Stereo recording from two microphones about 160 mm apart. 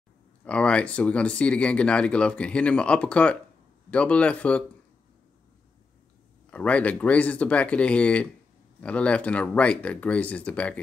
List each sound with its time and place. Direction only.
0.5 s speech: 5° left (ahead or behind)
6.5 s speech: 10° left (ahead or behind)